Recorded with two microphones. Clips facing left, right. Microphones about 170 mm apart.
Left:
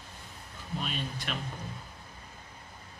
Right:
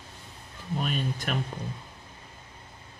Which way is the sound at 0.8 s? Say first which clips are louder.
Right 7 dB; 50° right (ahead or behind).